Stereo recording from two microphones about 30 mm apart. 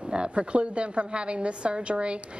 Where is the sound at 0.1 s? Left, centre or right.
Right.